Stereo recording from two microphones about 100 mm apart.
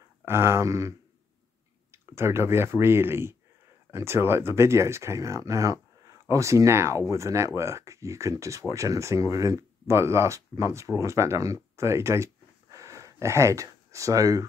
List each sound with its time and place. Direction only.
0.2 s speech: 25° right (ahead or behind)
2.1 s speech: 25° right (ahead or behind)
12.7 s a sound: 35° right (ahead or behind)